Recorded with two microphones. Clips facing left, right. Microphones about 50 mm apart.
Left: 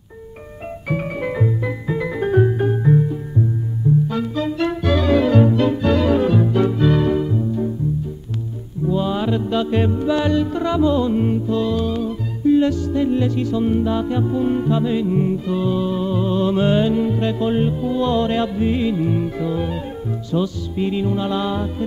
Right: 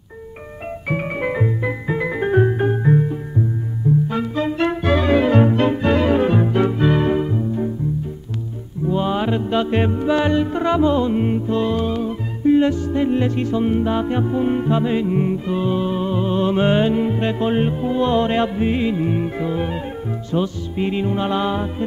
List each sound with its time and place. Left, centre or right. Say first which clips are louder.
0.8 s music: right 1 dB; right
8.8 s music: even; right